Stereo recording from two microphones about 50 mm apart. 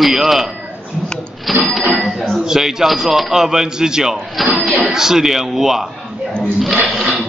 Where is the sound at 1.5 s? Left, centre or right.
Centre.